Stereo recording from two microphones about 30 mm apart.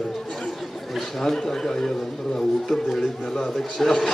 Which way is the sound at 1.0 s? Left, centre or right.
Centre.